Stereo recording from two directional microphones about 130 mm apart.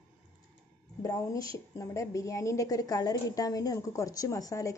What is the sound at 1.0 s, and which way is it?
A woman's voice, 25° left (ahead or behind).